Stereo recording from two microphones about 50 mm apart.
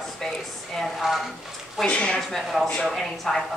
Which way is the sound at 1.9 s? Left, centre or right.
Left.